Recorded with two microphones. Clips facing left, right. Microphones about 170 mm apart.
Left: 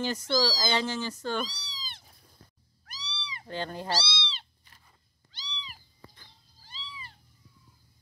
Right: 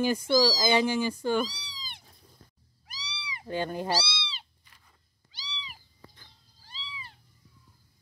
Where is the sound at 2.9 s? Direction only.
15° right (ahead or behind).